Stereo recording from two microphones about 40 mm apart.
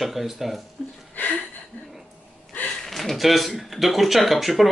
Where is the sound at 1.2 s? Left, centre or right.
Left.